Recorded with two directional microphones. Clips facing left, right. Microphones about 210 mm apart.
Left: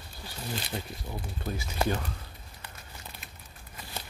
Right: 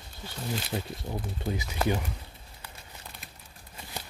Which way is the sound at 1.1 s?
25° right (ahead or behind).